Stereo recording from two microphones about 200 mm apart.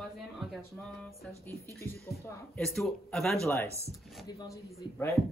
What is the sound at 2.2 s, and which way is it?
Speech, 5° left (ahead or behind).